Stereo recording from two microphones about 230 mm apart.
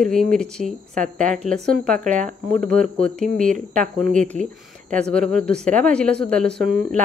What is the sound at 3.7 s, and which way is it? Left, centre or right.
Speech, right.